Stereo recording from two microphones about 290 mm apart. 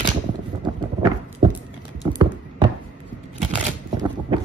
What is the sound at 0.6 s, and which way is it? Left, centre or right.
Clip-clop, centre.